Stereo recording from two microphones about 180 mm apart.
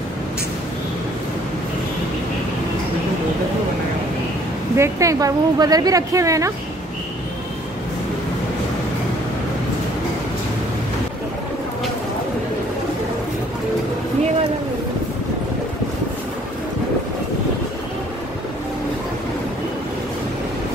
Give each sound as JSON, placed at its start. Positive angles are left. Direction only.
{"t": 4.7, "sound": "a woman's voice", "side_deg": -15}